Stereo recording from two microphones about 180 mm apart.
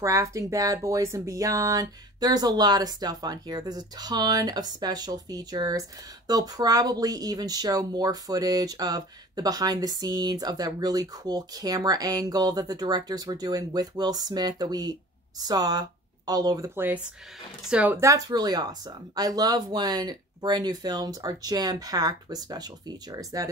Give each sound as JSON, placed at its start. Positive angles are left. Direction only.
{"t": 0.0, "sound": "speech", "side_deg": -20}